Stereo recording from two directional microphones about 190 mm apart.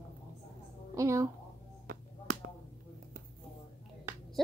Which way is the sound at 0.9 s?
15° right (ahead or behind).